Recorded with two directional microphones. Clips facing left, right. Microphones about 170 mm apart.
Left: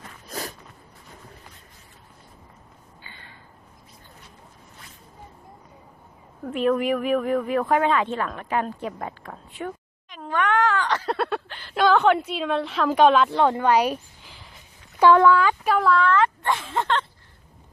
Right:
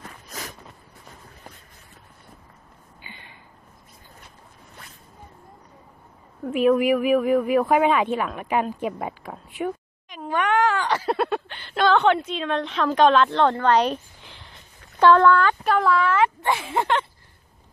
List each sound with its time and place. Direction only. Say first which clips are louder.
3.0 s a sound: right 3 dB; 15° right (ahead or behind)
6.4 s speech: right 3 dB; 5° right (ahead or behind)
15.9 s speech: left 2 dB; 10° right (ahead or behind)